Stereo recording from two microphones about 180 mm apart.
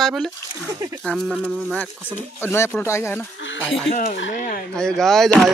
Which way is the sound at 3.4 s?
90° left.